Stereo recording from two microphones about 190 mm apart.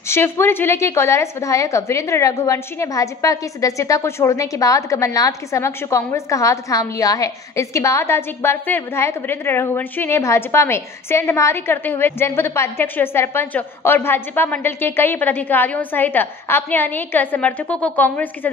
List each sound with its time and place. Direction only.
0.1 s a woman's voice: 10° left (ahead or behind)